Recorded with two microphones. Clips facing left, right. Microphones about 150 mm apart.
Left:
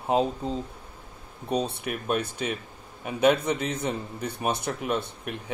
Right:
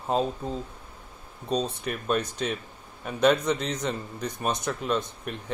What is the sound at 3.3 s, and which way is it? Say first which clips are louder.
Speech: right 1 dB; 55° left (ahead or behind).